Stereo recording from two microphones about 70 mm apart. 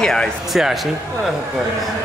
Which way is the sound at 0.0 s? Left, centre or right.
Centre.